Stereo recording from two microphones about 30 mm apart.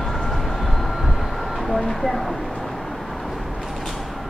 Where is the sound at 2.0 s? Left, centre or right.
Centre.